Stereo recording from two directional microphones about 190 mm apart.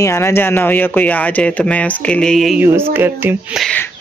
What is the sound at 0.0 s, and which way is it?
Speech, 15° left (ahead or behind).